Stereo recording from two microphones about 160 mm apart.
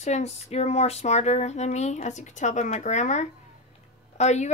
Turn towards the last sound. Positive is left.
turn(degrees=45)  # may be behind; listen again after turning